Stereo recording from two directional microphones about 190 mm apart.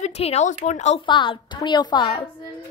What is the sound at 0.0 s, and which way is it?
Speech, 35° left (ahead or behind).